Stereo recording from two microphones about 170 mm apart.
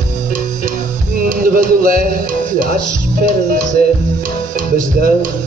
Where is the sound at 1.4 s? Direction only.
55° right (ahead or behind).